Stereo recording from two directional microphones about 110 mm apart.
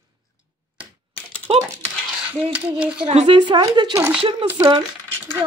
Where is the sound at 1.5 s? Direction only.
65° right (ahead or behind).